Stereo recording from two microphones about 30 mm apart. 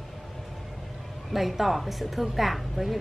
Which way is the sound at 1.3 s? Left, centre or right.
Centre.